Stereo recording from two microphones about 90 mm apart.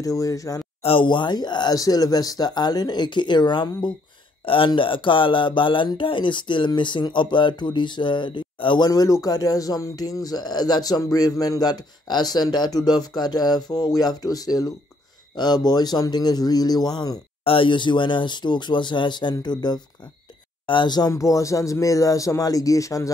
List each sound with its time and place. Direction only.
0.0 s speech: 40° left (ahead or behind)
0.8 s speech: 70° left (ahead or behind)
4.5 s speech: 75° left (ahead or behind); by 17.2 s 50° left (ahead or behind)
17.5 s speech: 70° left (ahead or behind); by 19.8 s 50° left (ahead or behind)
20.6 s speech: 60° left (ahead or behind)
21.1 s speech: 40° left (ahead or behind)